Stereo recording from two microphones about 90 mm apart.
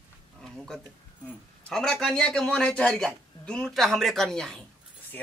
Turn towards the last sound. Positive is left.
turn(degrees=5)  # may be behind; listen again after turning